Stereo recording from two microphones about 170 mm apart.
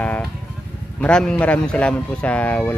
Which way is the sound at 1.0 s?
5° left (ahead or behind).